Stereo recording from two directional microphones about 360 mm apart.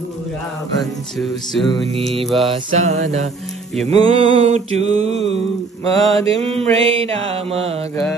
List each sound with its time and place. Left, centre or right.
0.7 s music: centre
2.8 s mantra: centre
5.9 s music: centre
6.4 s mantra: centre